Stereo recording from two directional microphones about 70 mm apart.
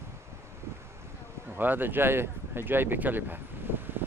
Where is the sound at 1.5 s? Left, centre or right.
Right.